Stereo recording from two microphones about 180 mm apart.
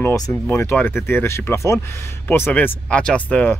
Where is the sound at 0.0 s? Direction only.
15° left (ahead or behind).